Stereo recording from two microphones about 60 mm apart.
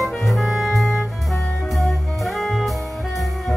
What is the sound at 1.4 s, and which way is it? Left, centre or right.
Music, centre.